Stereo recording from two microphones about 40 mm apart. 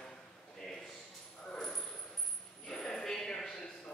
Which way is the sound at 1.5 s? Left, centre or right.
Left.